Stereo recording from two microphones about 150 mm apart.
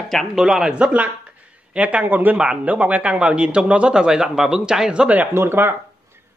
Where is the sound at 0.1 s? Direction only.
Centre (ahead or behind).